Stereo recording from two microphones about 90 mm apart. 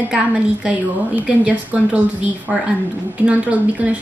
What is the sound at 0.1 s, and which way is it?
A woman's voice, 10° right (ahead or behind).